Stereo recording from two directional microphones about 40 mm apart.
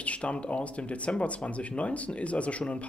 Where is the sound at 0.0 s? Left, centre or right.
Left.